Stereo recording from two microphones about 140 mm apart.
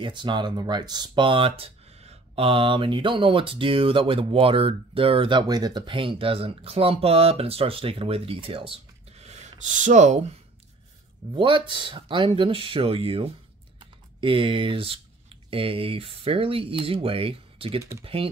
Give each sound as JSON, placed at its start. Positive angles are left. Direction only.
{"t": 0.0, "sound": "speech", "side_deg": -35}
{"t": 11.3, "sound": "speech", "side_deg": -35}